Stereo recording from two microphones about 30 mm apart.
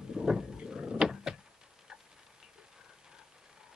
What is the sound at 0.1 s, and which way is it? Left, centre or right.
Wild animals, centre.